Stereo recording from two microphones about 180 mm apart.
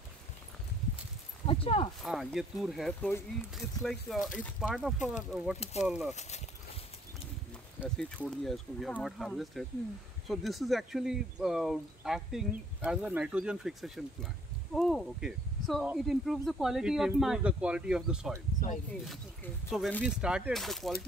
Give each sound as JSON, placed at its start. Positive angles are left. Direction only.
{"t": 1.5, "sound": "speech", "side_deg": 30}
{"t": 2.0, "sound": "speech", "side_deg": 0}
{"t": 5.6, "sound": "speech", "side_deg": 35}
{"t": 5.9, "sound": "speech", "side_deg": 0}
{"t": 7.8, "sound": "speech", "side_deg": -5}
{"t": 19.7, "sound": "speech", "side_deg": 0}